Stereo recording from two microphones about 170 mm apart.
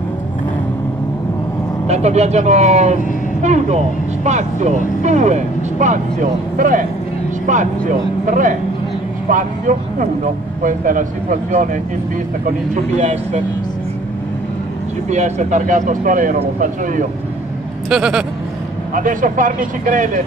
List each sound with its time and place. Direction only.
1.9 s speech: 40° right (ahead or behind)
15.0 s speech: 45° right (ahead or behind)
17.8 s speech: 5° right (ahead or behind)
18.9 s speech: 50° right (ahead or behind)